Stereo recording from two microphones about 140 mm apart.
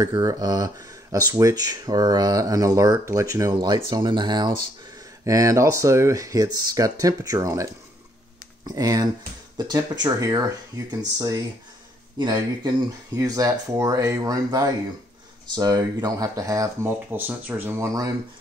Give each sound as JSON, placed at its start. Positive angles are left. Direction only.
{"t": 0.0, "sound": "speech", "side_deg": -25}